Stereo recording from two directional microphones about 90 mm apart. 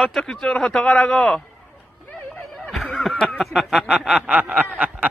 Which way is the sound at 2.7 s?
Centre (ahead or behind).